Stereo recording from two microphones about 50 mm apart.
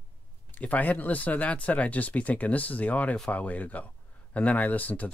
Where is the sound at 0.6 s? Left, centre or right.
Left.